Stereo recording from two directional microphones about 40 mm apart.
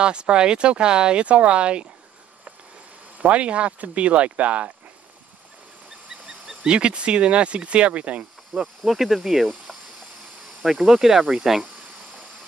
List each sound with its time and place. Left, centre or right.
0.0 s speech: right
3.2 s speech: right
6.0 s a sound: right
6.6 s speech: right
8.5 s speech: right
8.8 s speech: centre